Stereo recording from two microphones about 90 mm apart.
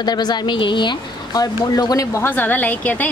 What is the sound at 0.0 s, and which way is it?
Speech, 50° left (ahead or behind).